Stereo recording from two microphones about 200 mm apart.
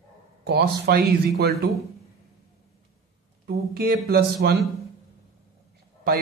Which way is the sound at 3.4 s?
50° right (ahead or behind).